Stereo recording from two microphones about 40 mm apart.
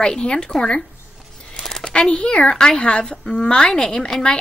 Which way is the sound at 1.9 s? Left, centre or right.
Left.